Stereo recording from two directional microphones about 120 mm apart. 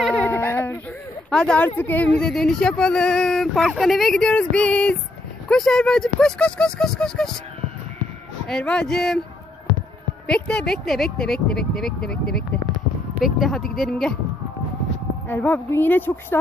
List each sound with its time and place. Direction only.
0.2 s a sound: 15° left (ahead or behind)
1.3 s a woman's voice: 10° left (ahead or behind)
8.5 s speech: 5° left (ahead or behind)
10.2 s speech: 10° left (ahead or behind)
15.2 s a woman's voice: 15° left (ahead or behind)